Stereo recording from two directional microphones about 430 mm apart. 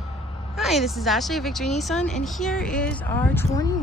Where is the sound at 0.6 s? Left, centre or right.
Centre.